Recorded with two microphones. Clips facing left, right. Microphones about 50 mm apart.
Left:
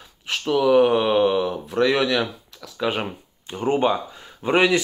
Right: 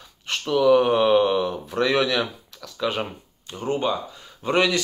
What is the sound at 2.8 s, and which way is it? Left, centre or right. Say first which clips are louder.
Speech: left 1 dB; centre.